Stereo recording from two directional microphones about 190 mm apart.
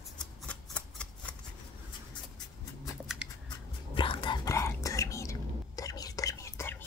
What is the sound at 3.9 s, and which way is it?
Whispering, 25° left (ahead or behind).